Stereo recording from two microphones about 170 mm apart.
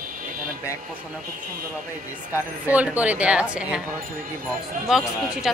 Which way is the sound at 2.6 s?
10° right (ahead or behind).